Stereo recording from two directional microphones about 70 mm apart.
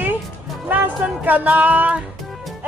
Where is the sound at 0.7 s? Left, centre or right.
Right.